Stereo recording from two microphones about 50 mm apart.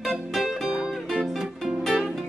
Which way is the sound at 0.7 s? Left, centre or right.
Centre.